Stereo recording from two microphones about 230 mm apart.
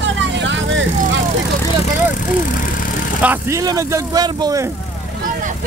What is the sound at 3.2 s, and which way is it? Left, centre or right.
Speech, centre.